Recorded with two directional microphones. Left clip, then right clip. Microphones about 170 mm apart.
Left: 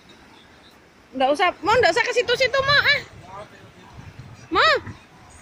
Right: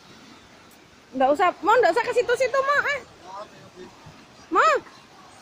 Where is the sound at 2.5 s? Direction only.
5° left (ahead or behind).